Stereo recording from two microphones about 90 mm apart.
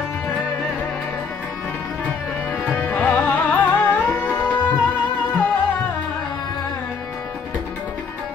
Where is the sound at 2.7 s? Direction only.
20° left (ahead or behind).